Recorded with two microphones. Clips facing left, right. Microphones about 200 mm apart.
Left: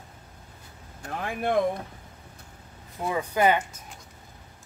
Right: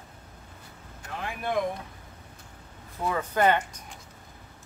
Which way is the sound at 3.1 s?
10° left (ahead or behind).